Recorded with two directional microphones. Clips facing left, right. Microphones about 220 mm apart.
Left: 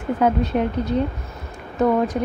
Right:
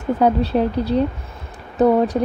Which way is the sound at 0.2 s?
35° right (ahead or behind).